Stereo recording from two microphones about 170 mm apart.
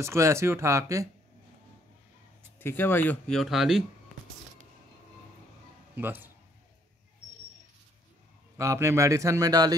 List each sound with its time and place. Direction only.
0.0 s a man's voice: 15° right (ahead or behind)
2.6 s speech: 10° left (ahead or behind)
5.9 s speech: 10° right (ahead or behind)
8.5 s a man's voice: 15° right (ahead or behind)